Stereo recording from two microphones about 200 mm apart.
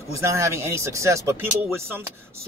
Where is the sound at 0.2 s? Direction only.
15° right (ahead or behind).